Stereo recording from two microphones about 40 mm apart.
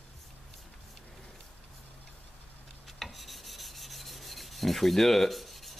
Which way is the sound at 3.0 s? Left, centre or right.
Centre.